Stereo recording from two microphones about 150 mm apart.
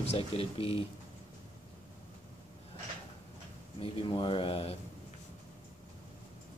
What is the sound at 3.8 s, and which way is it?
Speech, 35° left (ahead or behind).